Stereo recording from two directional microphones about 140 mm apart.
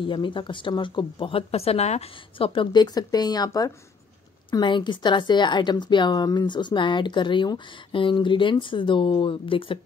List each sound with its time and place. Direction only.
0.0 s a woman's voice: 35° left (ahead or behind)